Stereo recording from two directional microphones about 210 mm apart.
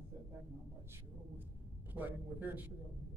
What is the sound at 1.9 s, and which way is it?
Speech, 10° right (ahead or behind).